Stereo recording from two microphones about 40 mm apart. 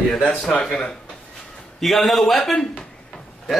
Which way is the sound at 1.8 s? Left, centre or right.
Centre.